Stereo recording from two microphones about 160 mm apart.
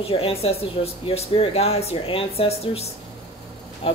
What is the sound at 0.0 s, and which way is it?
Speech, 35° left (ahead or behind).